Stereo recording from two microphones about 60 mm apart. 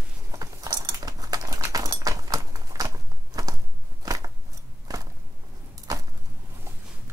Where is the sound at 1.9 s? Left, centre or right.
Right.